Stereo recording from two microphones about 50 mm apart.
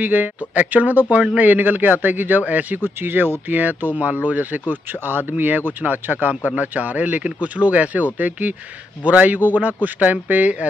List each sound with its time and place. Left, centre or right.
0.0 s speech: right
2.8 s speech: right